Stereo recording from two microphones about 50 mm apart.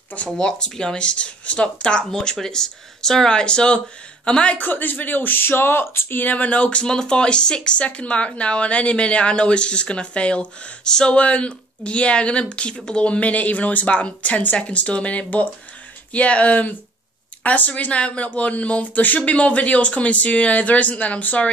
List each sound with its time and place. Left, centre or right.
0.4 s speech: centre
2.0 s speech: centre
4.6 s speech: left